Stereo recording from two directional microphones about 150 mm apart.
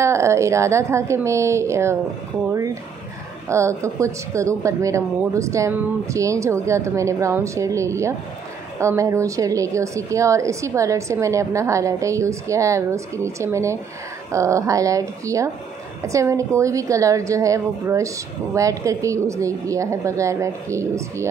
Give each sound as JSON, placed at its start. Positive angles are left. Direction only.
{"t": 0.0, "sound": "a woman's voice", "side_deg": -20}